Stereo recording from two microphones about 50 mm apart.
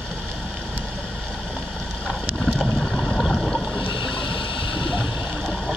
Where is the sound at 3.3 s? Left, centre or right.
Centre.